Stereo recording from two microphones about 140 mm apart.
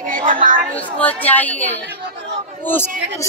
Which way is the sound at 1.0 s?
10° left (ahead or behind).